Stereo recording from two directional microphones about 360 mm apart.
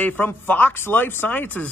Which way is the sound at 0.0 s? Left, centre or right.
Centre.